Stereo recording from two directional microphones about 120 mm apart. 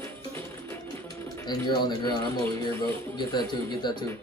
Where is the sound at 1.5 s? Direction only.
35° left (ahead or behind).